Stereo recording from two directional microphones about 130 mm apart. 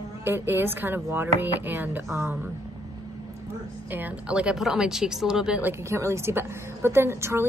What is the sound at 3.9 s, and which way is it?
A woman's voice, 10° right (ahead or behind).